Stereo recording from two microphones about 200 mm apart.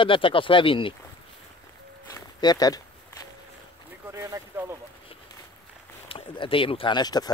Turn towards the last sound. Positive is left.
turn(degrees=20)  # may be behind; listen again after turning